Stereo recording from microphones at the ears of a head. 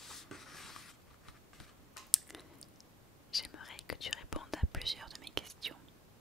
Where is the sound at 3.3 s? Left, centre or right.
Left.